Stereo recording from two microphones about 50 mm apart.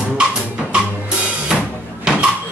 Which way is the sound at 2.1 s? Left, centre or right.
Centre.